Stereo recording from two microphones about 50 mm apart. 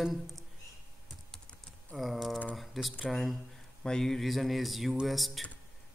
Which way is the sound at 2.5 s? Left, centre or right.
Centre.